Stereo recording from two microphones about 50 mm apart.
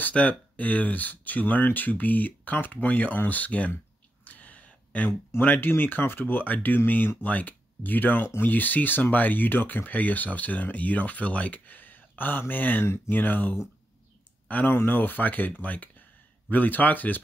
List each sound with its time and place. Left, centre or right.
0.1 s speech: left
4.2 s a sound: left
5.4 s speech: left
12.8 s speech: left
13.1 s speech: left
14.7 s speech: left